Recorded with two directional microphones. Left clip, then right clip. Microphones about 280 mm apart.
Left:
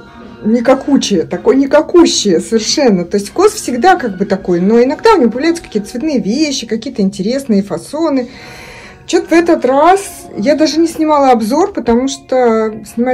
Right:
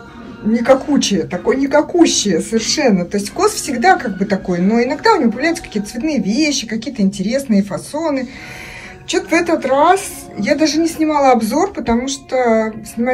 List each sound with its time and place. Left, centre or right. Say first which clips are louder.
0.5 s a woman's voice: left 2 dB; centre